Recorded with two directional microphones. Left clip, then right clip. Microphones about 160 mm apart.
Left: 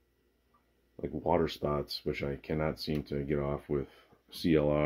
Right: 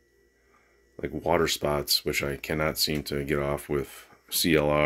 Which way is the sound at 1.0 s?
Centre (ahead or behind).